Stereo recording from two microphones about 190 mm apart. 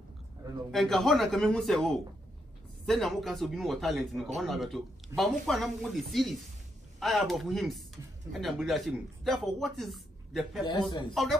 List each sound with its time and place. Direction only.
0.7 s speech: centre (ahead or behind)
10.6 s a man's voice: 25° left (ahead or behind)